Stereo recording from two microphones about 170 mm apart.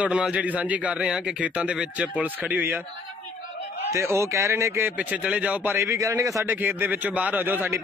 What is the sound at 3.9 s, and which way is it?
Speech, 15° right (ahead or behind).